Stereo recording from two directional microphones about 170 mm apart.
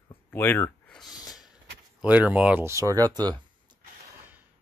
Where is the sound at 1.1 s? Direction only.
20° left (ahead or behind).